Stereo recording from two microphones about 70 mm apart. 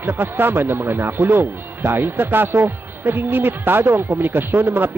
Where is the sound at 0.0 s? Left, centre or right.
Right.